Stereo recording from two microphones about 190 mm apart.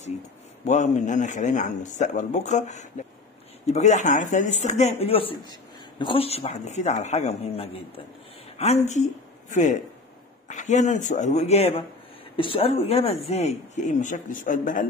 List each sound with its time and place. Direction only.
0.7 s speech: 40° left (ahead or behind)